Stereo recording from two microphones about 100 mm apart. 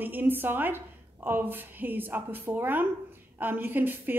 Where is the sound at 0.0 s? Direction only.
20° right (ahead or behind).